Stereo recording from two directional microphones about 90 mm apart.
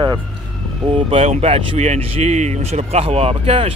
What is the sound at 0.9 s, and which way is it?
Speech, 90° right.